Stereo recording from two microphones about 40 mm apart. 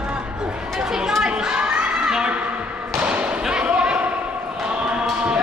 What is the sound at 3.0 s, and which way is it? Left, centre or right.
Thump, right.